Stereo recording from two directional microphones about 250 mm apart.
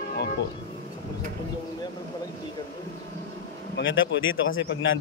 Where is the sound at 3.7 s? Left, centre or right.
Left.